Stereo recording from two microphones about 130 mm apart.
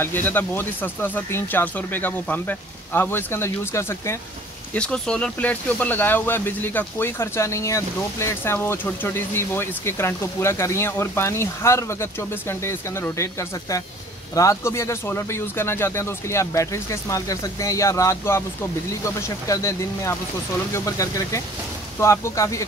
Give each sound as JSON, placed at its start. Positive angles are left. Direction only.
{"t": 0.0, "sound": "speech", "side_deg": 15}
{"t": 4.7, "sound": "speech", "side_deg": 5}